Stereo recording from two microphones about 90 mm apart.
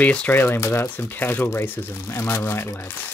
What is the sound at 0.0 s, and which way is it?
Speech, 15° left (ahead or behind).